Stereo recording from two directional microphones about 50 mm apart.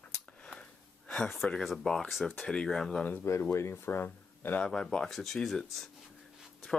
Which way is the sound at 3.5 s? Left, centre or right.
Left.